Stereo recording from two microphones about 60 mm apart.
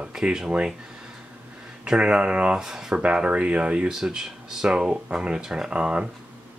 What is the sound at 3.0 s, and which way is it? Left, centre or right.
Speech, centre.